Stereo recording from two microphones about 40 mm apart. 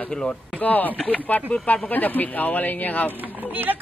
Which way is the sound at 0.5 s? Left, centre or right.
Left.